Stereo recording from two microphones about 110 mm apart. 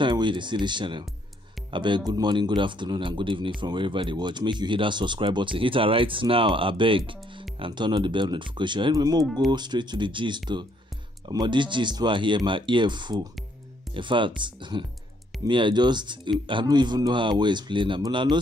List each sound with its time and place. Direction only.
0.0 s speech: 45° right (ahead or behind)